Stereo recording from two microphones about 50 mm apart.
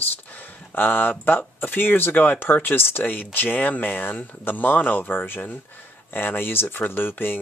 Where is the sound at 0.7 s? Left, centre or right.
Left.